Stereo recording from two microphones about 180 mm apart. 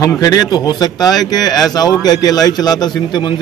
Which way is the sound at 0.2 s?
20° left (ahead or behind).